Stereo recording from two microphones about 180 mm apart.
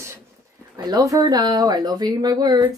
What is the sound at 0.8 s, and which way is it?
A woman's voice, 25° right (ahead or behind).